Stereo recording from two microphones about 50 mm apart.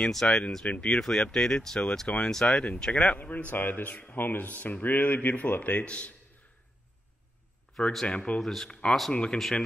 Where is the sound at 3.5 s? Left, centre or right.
Left.